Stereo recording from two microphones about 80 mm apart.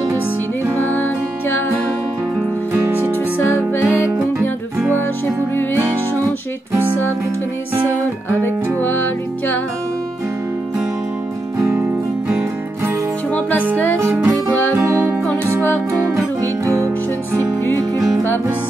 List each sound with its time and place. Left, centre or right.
0.8 s music: left
2.7 s music: right
3.3 s music: left
8.3 s music: left
11.5 s music: right
11.8 s music: centre
13.9 s music: right
16.6 s music: right